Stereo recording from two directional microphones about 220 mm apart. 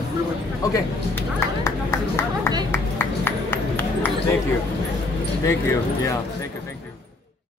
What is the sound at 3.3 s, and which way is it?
Run, 10° left (ahead or behind).